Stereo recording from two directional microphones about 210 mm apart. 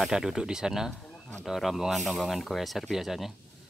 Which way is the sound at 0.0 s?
Centre (ahead or behind).